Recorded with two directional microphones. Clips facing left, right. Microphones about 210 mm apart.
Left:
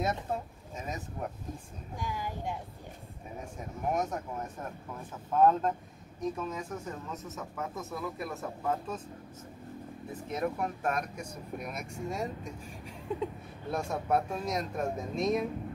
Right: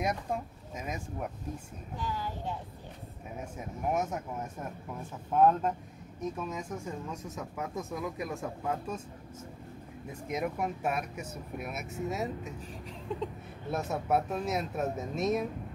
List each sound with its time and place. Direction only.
0.7 s speech: 10° right (ahead or behind)
2.0 s speech: 10° left (ahead or behind)
3.3 s speech: 10° right (ahead or behind)
10.2 s speech: 10° right (ahead or behind)
13.1 s speech: 10° left (ahead or behind)
13.7 s speech: 5° right (ahead or behind)